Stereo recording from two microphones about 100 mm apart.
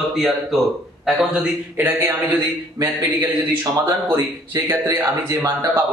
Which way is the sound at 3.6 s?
25° right (ahead or behind).